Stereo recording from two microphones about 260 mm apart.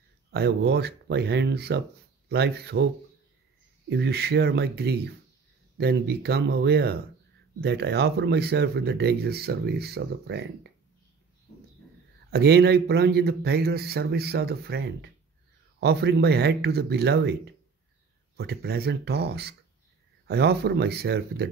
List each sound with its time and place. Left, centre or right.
0.3 s speech: right
3.9 s speech: right
12.3 s speech: right